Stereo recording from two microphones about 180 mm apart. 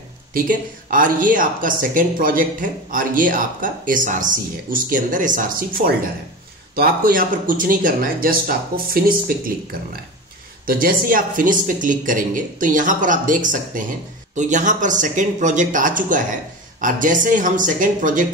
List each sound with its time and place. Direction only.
0.3 s speech: 50° right (ahead or behind)